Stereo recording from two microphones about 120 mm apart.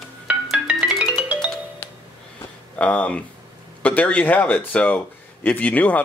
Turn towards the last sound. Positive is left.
turn(degrees=15)  # may be behind; listen again after turning